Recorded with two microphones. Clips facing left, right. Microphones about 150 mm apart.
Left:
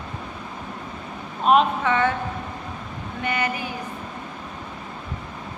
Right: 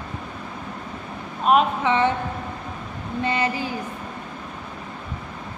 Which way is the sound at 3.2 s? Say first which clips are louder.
Right 2 dB; 30° right (ahead or behind).